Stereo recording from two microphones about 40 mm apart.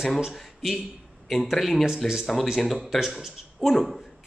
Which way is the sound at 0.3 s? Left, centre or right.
Centre.